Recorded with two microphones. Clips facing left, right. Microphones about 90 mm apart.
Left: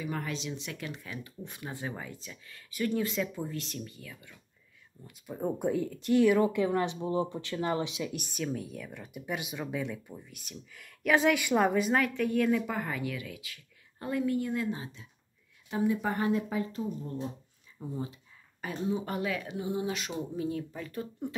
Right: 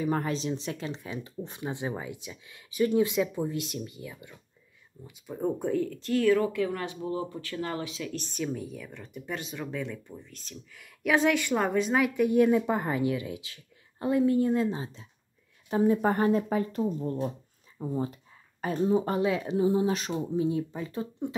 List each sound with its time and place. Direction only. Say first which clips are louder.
0.0 s speech: right 7 dB; 35° right (ahead or behind); by 4.4 s 20° right (ahead or behind)
5.0 s speech: right 3 dB; 5° left (ahead or behind)
12.0 s speech: right 5 dB; 15° right (ahead or behind); by 20.4 s 35° right (ahead or behind)
20.4 s speech: right 5 dB; 20° right (ahead or behind)